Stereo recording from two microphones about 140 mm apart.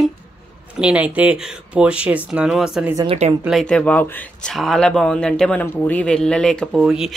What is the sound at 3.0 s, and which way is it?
Speech, 45° right (ahead or behind).